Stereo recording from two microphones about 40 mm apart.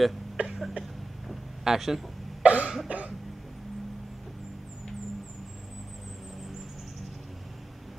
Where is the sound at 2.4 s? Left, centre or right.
Right.